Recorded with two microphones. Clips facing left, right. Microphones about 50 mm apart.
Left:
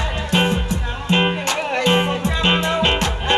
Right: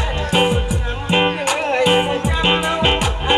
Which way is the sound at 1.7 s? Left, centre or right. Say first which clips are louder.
Right 2 dB; centre.